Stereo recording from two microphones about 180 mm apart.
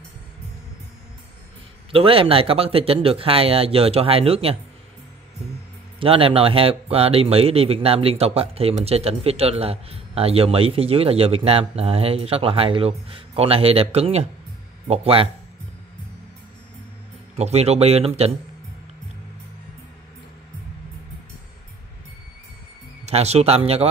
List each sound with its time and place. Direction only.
1.9 s speech: 30° right (ahead or behind)
5.9 s speech: 30° right (ahead or behind)
17.4 s speech: 35° right (ahead or behind)
23.0 s speech: 35° right (ahead or behind)